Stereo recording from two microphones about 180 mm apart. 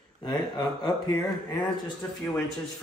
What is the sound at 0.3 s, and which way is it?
Speech, 25° left (ahead or behind).